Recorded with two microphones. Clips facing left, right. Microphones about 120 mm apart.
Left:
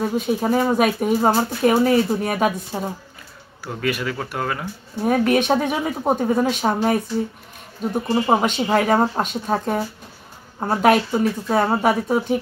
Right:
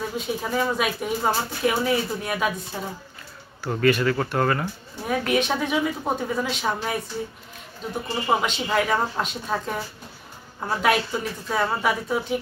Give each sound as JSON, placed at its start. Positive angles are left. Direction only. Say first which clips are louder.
{"t": 0.0, "sound": "speech", "louder": "left 7 dB", "side_deg": 40}
{"t": 3.6, "sound": "speech", "louder": "right 4 dB", "side_deg": 10}
{"t": 5.0, "sound": "speech", "louder": "left 6 dB", "side_deg": 40}
{"t": 8.1, "sound": "speech", "louder": "left 5 dB", "side_deg": 40}